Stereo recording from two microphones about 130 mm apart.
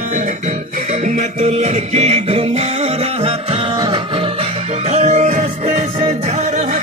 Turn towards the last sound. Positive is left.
turn(degrees=-55)  # may be behind; listen again after turning